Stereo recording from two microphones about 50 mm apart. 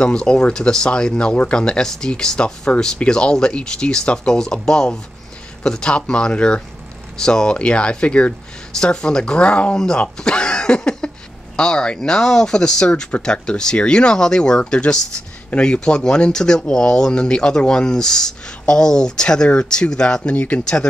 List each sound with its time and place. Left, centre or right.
0.0 s speech: centre
20.3 s speech: left